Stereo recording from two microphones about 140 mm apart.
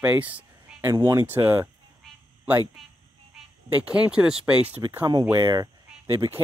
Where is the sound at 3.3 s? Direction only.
5° right (ahead or behind).